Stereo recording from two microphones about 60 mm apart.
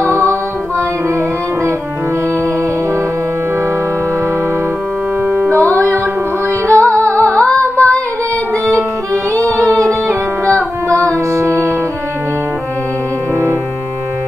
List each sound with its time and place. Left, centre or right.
0.0 s music: right
5.2 s music: right
5.5 s music: left
10.9 s music: right